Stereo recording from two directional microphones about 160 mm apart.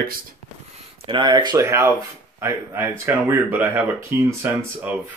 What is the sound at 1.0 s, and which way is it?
Speech, 30° right (ahead or behind).